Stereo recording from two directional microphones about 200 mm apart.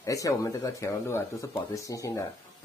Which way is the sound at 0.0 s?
15° left (ahead or behind).